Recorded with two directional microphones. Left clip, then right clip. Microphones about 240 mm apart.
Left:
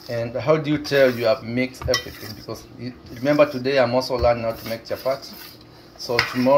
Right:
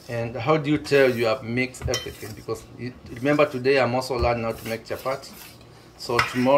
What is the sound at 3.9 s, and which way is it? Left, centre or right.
Speech, right.